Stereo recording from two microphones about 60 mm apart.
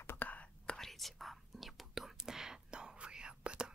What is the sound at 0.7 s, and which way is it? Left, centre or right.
Whispering, centre.